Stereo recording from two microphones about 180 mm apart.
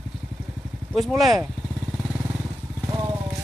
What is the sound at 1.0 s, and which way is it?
Speech, centre (ahead or behind).